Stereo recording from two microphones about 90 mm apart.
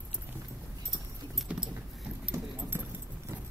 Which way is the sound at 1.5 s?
10° right (ahead or behind).